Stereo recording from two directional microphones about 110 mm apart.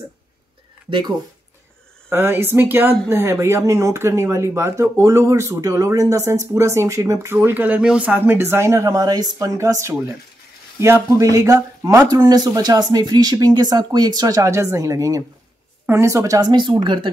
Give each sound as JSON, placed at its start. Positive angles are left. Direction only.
{"t": 0.8, "sound": "speech", "side_deg": -50}
{"t": 2.0, "sound": "speech", "side_deg": -20}